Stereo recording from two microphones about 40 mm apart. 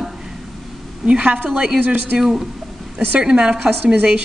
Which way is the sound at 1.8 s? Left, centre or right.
Right.